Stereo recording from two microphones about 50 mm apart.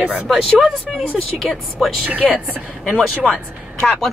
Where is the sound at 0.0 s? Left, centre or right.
Right.